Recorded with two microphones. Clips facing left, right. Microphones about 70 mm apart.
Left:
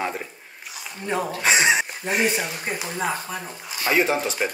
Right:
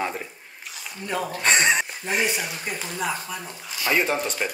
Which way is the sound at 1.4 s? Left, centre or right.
Centre.